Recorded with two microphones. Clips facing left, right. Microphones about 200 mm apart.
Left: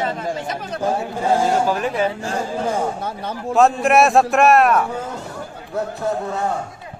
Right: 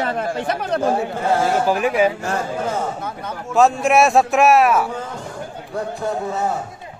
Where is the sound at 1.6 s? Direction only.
10° right (ahead or behind).